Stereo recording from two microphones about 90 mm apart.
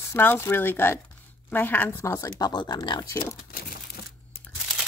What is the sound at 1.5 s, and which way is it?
Speech, 20° left (ahead or behind).